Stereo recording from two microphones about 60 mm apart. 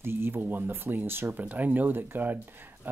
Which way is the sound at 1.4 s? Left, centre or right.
Right.